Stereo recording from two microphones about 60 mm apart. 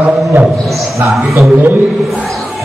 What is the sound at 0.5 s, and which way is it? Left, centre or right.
Speech, centre.